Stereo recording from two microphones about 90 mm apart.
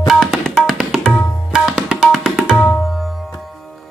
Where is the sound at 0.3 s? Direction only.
5° right (ahead or behind).